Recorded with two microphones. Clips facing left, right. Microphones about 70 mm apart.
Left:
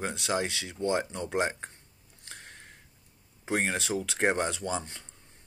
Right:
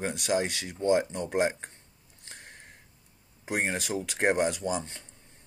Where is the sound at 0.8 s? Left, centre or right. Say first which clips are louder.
Right 4 dB; left.